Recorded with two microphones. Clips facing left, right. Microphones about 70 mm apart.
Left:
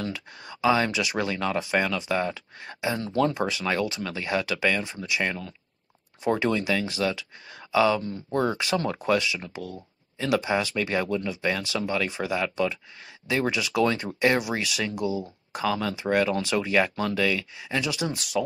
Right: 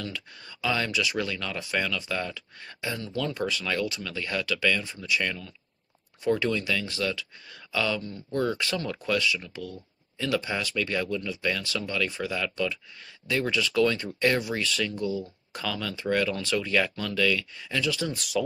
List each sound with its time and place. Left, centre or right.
0.1 s speech: left
3.0 s speech: left
3.3 s speech: left
18.1 s speech: centre